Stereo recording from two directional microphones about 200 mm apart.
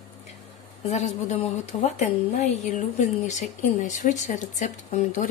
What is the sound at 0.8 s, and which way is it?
A woman's voice, 35° left (ahead or behind).